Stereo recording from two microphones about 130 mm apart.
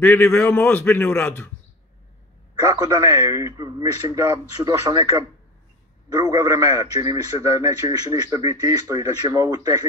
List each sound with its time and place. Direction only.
0.0 s a man's voice: 15° left (ahead or behind)
2.6 s speech: 35° right (ahead or behind)